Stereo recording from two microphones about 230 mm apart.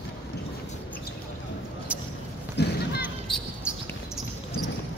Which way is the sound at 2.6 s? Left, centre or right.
Left.